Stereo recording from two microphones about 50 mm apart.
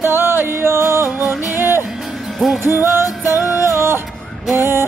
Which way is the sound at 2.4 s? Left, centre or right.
Centre.